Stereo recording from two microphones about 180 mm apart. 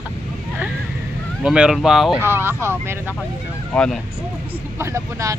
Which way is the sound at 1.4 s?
5° right (ahead or behind).